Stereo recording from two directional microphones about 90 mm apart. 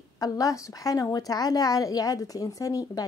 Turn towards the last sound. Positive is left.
turn(degrees=40)  # may be behind; listen again after turning